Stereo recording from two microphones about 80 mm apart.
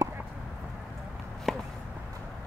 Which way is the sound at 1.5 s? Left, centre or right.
Centre.